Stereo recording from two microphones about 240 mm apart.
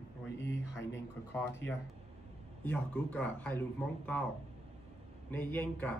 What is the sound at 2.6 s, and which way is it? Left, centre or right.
Speech, centre.